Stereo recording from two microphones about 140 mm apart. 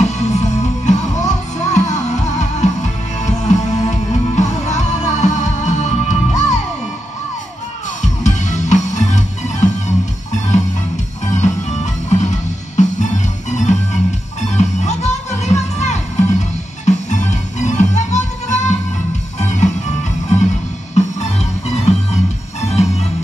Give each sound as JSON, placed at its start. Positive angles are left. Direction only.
{"t": 0.0, "sound": "music", "side_deg": 55}
{"t": 8.0, "sound": "music", "side_deg": 60}
{"t": 11.3, "sound": "music", "side_deg": 55}